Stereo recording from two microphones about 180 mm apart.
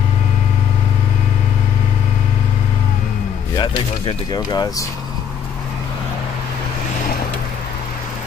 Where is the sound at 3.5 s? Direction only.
25° left (ahead or behind).